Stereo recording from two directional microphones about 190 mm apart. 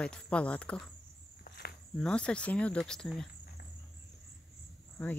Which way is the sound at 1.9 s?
5° left (ahead or behind).